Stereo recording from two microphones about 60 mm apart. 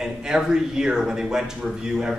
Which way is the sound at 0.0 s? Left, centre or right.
Centre.